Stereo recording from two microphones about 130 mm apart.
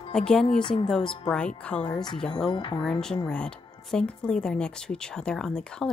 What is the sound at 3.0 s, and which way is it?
Speech, 5° left (ahead or behind).